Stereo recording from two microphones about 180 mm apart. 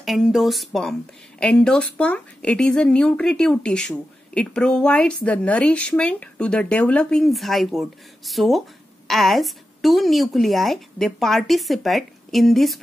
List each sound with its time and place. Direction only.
0.0 s speech: centre (ahead or behind)